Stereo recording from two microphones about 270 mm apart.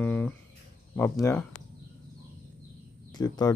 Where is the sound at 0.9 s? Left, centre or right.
Centre.